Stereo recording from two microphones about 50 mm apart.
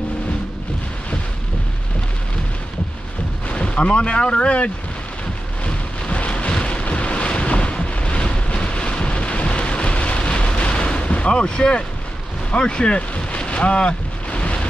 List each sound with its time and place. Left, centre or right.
3.4 s speech: left
6.0 s wind noise: left
12.4 s vehicle: centre